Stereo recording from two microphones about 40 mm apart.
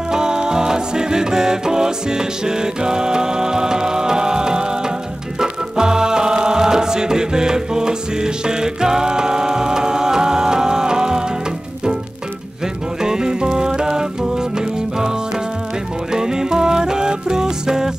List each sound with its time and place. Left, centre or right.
0.1 s music: centre
13.0 s music: centre